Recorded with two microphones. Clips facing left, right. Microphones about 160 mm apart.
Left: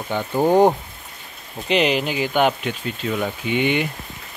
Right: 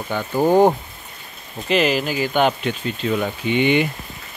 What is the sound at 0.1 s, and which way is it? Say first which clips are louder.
Speech: left 1 dB; 20° left (ahead or behind).